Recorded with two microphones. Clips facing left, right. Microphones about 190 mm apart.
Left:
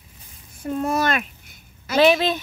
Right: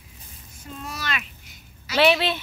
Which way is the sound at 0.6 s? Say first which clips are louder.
Left 14 dB; 55° left (ahead or behind).